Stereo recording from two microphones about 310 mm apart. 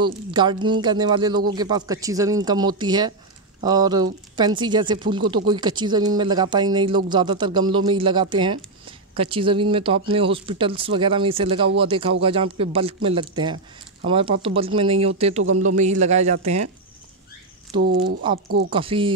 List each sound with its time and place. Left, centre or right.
0.0 s speech: centre
17.7 s speech: right
18.7 s speech: centre